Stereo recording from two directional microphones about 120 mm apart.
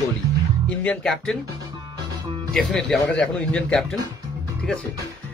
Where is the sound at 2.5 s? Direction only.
5° left (ahead or behind).